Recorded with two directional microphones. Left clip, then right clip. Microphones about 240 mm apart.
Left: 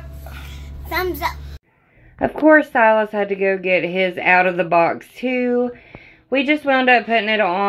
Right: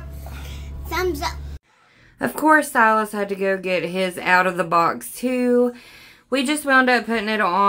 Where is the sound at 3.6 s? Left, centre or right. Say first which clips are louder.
Left 5 dB; right.